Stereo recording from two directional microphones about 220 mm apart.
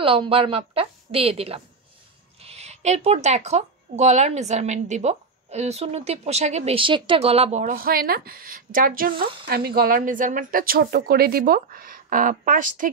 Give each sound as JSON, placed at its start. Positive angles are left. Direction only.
{"t": 0.0, "sound": "a woman's voice", "side_deg": -25}